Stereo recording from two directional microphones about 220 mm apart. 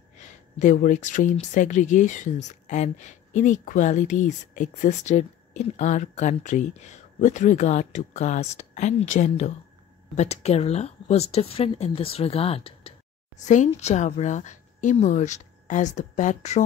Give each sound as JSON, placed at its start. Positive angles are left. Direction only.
{"t": 0.6, "sound": "speech", "side_deg": 35}